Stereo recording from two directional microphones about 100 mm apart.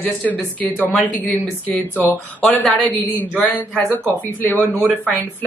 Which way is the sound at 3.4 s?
15° left (ahead or behind).